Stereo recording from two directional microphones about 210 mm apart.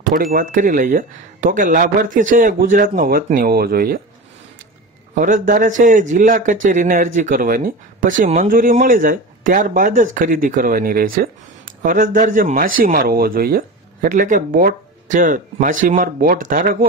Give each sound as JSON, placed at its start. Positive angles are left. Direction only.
{"t": 0.1, "sound": "a man's voice", "side_deg": -40}
{"t": 5.1, "sound": "a man's voice", "side_deg": -40}